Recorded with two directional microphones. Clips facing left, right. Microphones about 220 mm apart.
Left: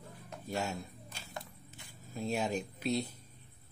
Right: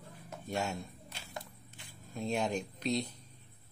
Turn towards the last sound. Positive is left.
turn(degrees=5)  # may be behind; listen again after turning